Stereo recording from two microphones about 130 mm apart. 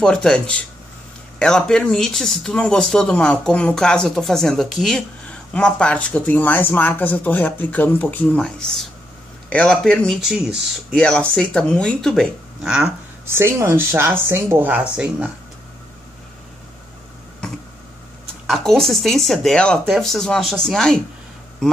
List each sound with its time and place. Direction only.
0.0 s speech: 5° left (ahead or behind)
11.0 s speech: 10° left (ahead or behind)
13.3 s speech: 20° right (ahead or behind)
18.5 s speech: 5° left (ahead or behind)